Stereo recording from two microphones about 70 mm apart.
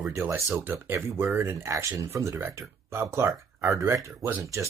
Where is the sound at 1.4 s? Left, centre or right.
Right.